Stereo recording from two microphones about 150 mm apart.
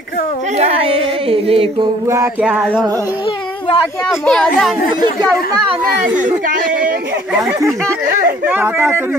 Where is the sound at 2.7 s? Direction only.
25° right (ahead or behind).